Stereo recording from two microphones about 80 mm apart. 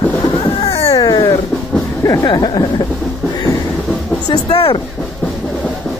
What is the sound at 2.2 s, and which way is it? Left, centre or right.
Speech, left.